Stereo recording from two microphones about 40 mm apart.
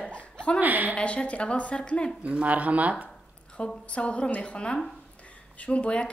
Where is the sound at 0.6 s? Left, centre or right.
Right.